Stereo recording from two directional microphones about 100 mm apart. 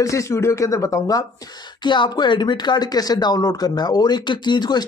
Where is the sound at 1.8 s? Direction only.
50° left (ahead or behind).